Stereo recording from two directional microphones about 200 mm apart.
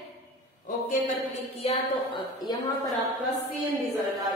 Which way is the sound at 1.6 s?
30° left (ahead or behind).